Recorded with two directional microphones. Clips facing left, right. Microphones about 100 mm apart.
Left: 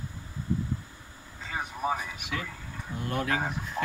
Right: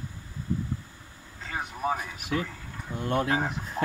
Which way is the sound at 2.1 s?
40° right (ahead or behind).